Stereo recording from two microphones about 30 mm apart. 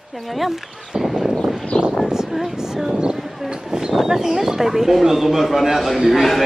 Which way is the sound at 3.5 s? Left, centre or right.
Right.